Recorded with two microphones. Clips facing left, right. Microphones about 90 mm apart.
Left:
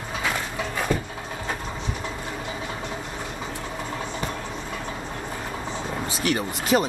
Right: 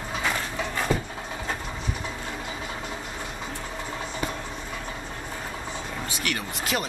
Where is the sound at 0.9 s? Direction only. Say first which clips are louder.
Left 1 dB; 10° right (ahead or behind).